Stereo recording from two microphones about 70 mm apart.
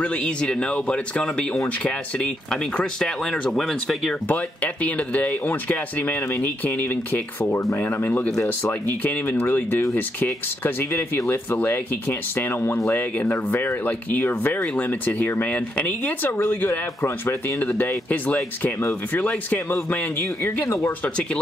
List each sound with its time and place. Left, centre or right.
0.0 s speech: centre
4.8 s speech: left
16.3 s speech: left
17.6 s speech: left
20.6 s speech: left